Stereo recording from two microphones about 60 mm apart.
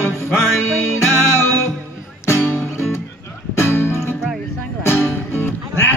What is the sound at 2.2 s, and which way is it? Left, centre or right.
Music, left.